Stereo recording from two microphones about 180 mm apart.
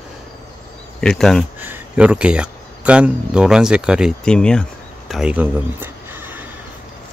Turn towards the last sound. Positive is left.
turn(degrees=-10)  # may be behind; listen again after turning